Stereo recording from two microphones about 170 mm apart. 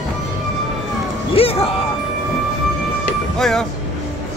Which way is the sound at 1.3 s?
35° left (ahead or behind).